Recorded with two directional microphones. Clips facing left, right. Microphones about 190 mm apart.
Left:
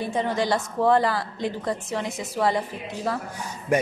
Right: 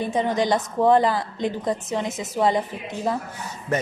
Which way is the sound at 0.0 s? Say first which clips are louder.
Right 3 dB; 20° right (ahead or behind).